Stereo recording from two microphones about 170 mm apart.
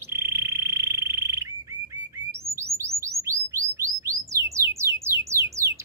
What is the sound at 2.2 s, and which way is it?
Bird, 15° right (ahead or behind).